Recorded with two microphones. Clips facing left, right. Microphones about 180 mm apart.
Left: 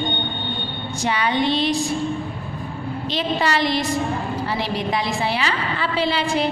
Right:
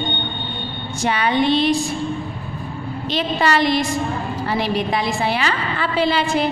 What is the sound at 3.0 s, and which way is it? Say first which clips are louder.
A woman's voice: right 3 dB; 55° right (ahead or behind).